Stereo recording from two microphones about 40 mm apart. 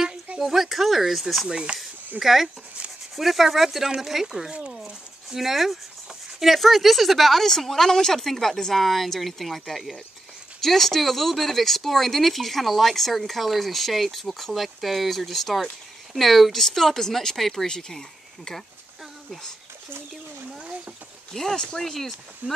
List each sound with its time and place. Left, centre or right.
0.4 s speech: centre
1.5 s speech: right
2.1 s speech: centre
4.5 s speech: right
5.3 s speech: centre
17.6 s speech: centre
21.3 s speech: centre
22.4 s speech: right